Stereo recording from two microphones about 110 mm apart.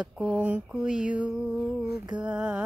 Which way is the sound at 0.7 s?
5° right (ahead or behind).